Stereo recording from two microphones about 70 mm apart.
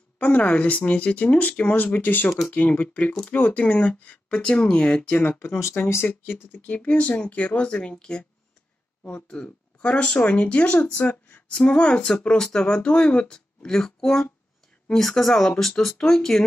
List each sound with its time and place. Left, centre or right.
0.2 s speech: left
6.0 s speech: left; by 16.4 s centre